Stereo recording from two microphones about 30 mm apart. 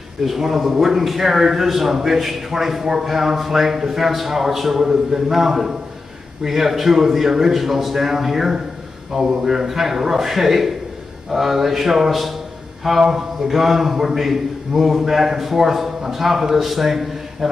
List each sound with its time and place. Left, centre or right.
0.2 s a man's voice: centre
13.0 s a man's voice: centre